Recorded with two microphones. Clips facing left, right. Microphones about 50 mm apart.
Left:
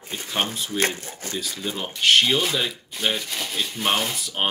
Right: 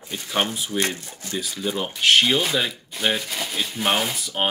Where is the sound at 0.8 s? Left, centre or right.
Left.